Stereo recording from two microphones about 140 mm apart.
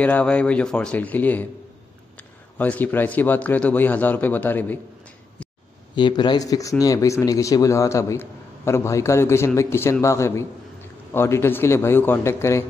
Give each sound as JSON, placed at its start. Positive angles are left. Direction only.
{"t": 0.0, "sound": "a man's voice", "side_deg": 10}
{"t": 5.9, "sound": "a man's voice", "side_deg": 35}